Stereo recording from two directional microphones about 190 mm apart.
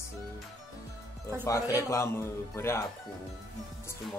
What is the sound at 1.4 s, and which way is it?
Speech, 15° left (ahead or behind).